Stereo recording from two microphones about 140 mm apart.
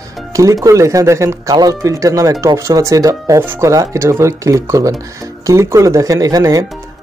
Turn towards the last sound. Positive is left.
turn(degrees=-25)  # may be behind; listen again after turning